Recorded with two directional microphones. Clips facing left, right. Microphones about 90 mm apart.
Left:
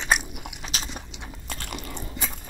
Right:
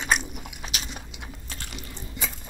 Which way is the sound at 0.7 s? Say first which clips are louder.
Left 2 dB; 35° left (ahead or behind).